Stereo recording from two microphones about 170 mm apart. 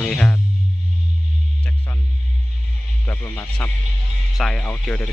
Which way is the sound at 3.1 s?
15° left (ahead or behind).